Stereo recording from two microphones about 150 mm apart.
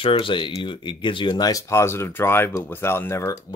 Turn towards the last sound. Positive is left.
turn(degrees=15)  # may be behind; listen again after turning